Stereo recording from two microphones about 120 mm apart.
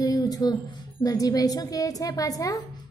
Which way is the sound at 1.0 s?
30° left (ahead or behind).